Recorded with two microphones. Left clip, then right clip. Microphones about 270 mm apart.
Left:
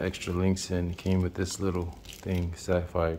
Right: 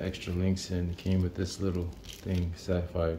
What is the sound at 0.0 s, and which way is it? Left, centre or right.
Speech, centre.